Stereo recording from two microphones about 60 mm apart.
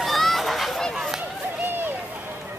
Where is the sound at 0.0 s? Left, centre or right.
Centre.